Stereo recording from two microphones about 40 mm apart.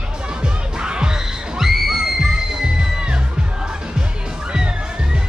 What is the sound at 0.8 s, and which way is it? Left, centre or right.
Music, right.